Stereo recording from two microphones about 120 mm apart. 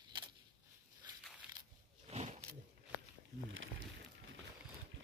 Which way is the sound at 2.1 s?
65° right (ahead or behind).